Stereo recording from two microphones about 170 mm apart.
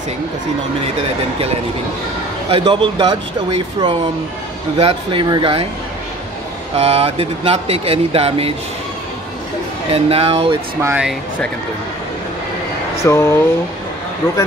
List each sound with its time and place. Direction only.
2.5 s a man's voice: 30° right (ahead or behind)
4.7 s speech: 30° right (ahead or behind)
6.8 s speech: 35° right (ahead or behind)
9.8 s speech: 35° right (ahead or behind)
10.8 s speech: 15° right (ahead or behind)
13.0 s speech: 15° left (ahead or behind)